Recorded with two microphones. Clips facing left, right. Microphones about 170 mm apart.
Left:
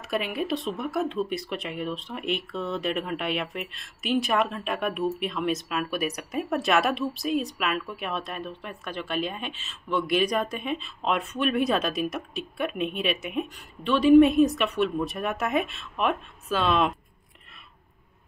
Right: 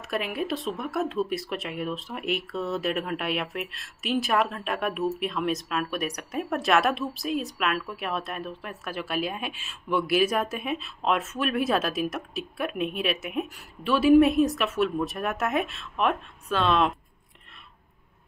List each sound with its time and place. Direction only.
0.0 s speech: centre (ahead or behind)